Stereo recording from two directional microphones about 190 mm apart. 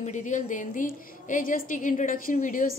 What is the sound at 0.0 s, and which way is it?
A woman's voice, 40° left (ahead or behind).